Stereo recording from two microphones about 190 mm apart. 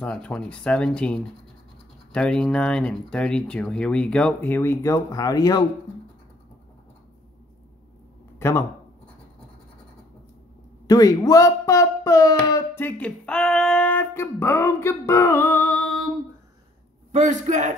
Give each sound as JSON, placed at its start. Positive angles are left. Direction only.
{"t": 0.0, "sound": "speech", "side_deg": 5}
{"t": 8.4, "sound": "a sound", "side_deg": 15}
{"t": 10.9, "sound": "speech", "side_deg": 20}
{"t": 17.1, "sound": "a man's voice", "side_deg": -40}